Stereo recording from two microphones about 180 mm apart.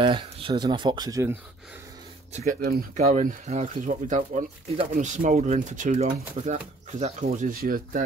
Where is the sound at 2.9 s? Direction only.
40° right (ahead or behind).